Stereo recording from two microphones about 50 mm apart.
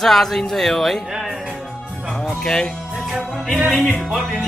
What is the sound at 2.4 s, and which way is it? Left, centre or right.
Speech, centre.